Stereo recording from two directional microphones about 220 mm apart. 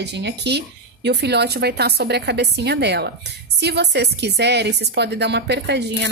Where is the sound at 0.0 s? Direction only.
50° right (ahead or behind).